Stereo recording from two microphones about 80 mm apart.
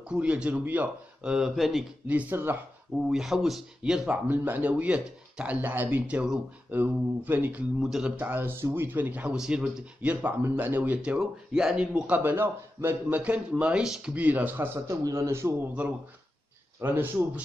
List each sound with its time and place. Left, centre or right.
0.0 s a man's voice: centre
2.0 s speech: right
3.0 s a man's voice: centre
4.3 s speech: right
6.7 s speech: right
7.8 s speech: centre
8.2 s speech: right
9.4 s a man's voice: centre
10.4 s speech: right
11.0 s a man's voice: centre
12.2 s a man's voice: right; by 14.1 s centre
14.1 s speech: right
15.0 s a man's voice: right
16.8 s speech: right